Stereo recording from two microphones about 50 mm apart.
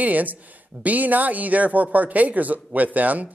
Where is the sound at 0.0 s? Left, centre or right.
Right.